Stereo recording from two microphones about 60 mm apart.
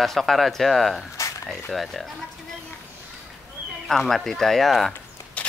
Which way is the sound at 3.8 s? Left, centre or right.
Centre.